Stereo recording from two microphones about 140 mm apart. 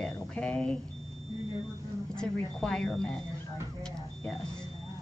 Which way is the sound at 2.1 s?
5° left (ahead or behind).